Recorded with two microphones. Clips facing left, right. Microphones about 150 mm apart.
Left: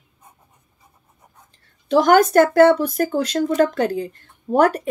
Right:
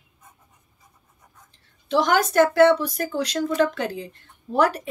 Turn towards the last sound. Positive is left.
turn(degrees=50)  # may be behind; listen again after turning